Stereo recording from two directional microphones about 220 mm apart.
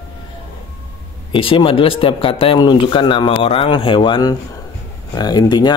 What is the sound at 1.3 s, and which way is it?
Speech, 25° left (ahead or behind).